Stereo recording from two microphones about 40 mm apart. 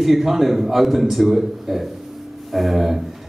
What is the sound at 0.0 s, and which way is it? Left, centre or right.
A man's voice, centre.